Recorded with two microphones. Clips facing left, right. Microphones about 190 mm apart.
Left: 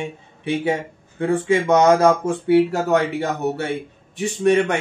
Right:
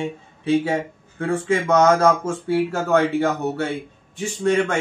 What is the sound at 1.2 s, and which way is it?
Speech, 15° left (ahead or behind).